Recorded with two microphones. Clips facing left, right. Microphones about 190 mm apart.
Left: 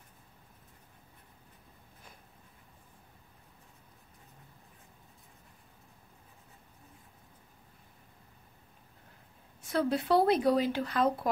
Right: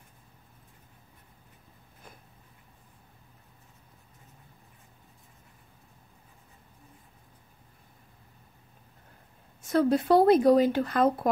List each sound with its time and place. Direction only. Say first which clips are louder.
9.6 s speech: right 6 dB; 45° right (ahead or behind)